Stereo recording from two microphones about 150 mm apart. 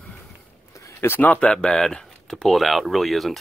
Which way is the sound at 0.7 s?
15° left (ahead or behind).